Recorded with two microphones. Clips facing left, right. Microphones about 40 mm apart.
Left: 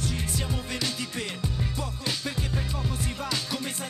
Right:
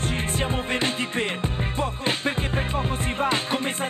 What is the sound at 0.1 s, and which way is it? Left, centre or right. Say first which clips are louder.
Music: right 6 dB; right.